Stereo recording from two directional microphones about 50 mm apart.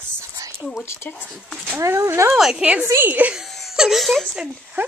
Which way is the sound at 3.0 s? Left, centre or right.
Right.